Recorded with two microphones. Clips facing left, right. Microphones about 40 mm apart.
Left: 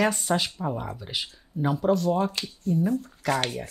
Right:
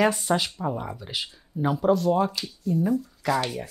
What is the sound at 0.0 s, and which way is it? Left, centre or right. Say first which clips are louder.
Speech: right 2 dB; centre.